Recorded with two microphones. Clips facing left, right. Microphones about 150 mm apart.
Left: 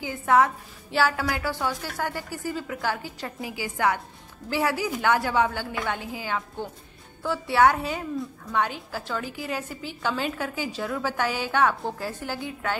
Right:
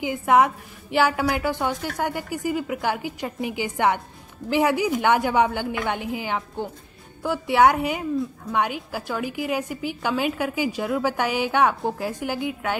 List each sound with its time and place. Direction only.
0.0 s a woman's voice: 15° right (ahead or behind)